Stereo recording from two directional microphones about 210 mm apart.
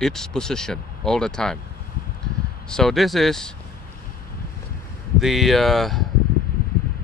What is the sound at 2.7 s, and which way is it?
Speech, centre (ahead or behind).